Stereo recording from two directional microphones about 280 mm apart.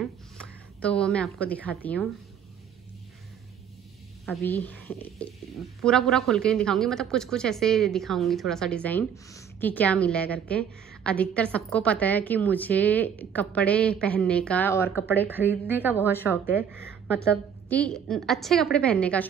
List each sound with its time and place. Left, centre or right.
0.0 s a woman's voice: centre
4.3 s speech: centre
15.2 s a woman's voice: centre
17.2 s speech: centre